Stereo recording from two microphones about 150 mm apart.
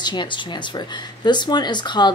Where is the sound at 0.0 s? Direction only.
30° left (ahead or behind).